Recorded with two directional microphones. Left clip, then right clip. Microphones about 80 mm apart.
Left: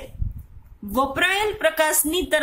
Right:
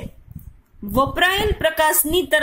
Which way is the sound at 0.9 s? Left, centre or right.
Right.